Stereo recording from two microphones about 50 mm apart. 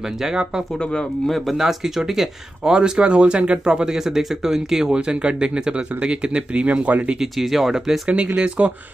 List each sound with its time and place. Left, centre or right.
0.2 s speech: centre
4.9 s speech: right
7.2 s speech: centre
8.4 s speech: right